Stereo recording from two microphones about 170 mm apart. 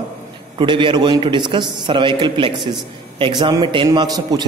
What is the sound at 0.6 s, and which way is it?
A man's voice, 30° right (ahead or behind).